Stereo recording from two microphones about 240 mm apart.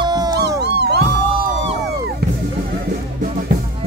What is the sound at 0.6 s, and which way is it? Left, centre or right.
Music, right.